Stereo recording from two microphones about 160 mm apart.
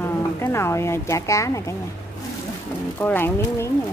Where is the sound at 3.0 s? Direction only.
10° left (ahead or behind).